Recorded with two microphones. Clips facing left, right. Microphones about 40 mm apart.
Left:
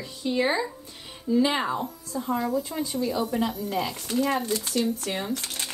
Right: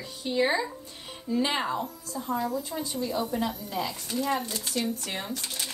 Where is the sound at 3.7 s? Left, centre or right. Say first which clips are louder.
Left 3 dB; left.